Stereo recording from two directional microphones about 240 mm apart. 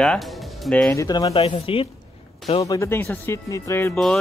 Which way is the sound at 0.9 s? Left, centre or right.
Centre.